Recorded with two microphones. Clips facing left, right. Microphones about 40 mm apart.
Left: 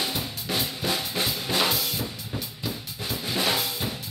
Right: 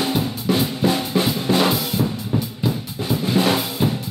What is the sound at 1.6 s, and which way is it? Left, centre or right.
Drum kit, centre.